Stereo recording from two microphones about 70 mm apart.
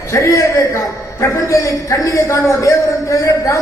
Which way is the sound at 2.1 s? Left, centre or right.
Left.